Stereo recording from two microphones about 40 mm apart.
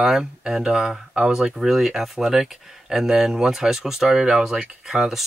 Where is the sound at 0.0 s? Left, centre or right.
Centre.